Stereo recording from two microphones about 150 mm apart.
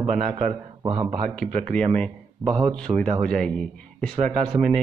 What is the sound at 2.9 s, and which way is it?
Speech, 25° right (ahead or behind).